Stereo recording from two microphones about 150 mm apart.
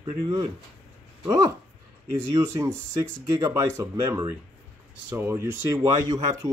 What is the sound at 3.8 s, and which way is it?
Speech, 20° right (ahead or behind).